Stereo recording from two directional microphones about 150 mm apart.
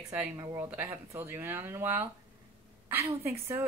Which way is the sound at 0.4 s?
20° right (ahead or behind).